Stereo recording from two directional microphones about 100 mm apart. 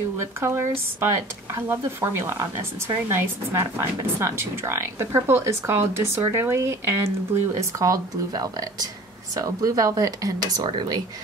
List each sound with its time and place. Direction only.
0.2 s speech: 25° right (ahead or behind)
7.8 s speech: 40° right (ahead or behind)